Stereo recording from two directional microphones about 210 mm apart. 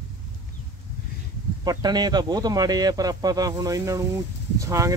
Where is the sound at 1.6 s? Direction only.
20° right (ahead or behind).